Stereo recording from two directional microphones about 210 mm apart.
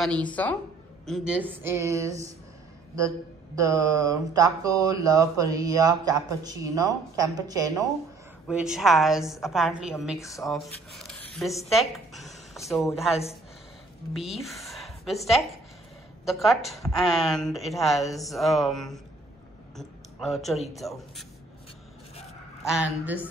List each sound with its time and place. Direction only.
0.0 s a woman's voice: 5° left (ahead or behind); by 2.3 s 15° right (ahead or behind)
3.5 s speech: 15° right (ahead or behind)
8.5 s a woman's voice: 5° right (ahead or behind)
10.1 s a woman's voice: 15° left (ahead or behind)
10.5 s a woman's voice: centre (ahead or behind)
16.3 s a woman's voice: centre (ahead or behind)
22.8 s speech: 10° right (ahead or behind)